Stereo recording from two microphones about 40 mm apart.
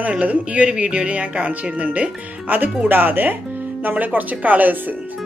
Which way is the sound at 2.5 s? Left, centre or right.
Right.